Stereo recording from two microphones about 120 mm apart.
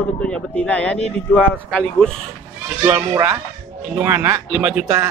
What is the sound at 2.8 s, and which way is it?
Speech, 20° right (ahead or behind).